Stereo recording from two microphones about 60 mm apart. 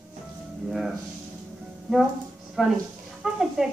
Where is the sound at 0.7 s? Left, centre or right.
Centre.